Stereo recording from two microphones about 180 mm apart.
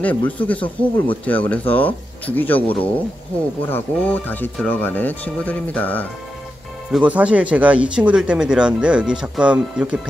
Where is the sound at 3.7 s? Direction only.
10° left (ahead or behind).